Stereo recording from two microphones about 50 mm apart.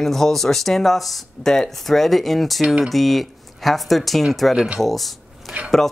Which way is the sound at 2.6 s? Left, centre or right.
Centre.